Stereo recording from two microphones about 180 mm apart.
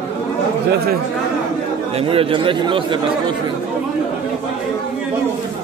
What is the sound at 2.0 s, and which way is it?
Speech, 30° right (ahead or behind).